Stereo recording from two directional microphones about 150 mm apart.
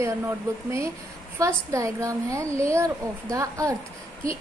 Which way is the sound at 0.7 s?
20° right (ahead or behind).